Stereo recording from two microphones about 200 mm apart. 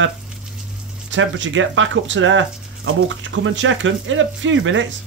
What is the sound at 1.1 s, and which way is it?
Speech, 70° right (ahead or behind).